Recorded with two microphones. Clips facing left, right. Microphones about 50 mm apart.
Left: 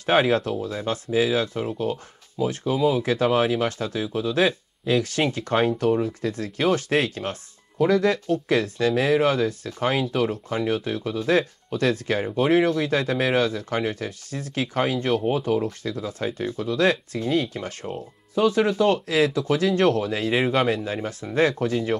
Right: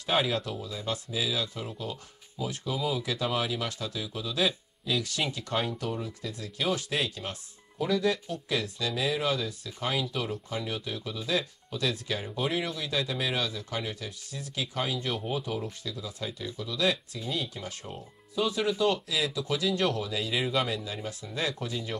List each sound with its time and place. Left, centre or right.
0.0 s speech: left